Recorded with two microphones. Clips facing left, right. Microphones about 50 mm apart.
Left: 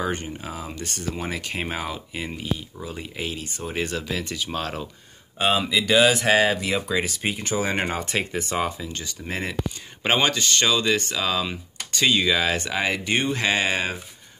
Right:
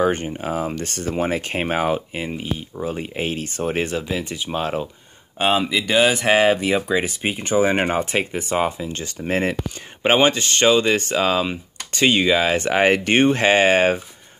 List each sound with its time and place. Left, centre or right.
0.0 s speech: right
1.1 s speech: right
2.2 s speech: right
2.8 s speech: right
3.8 s speech: right
10.0 s speech: right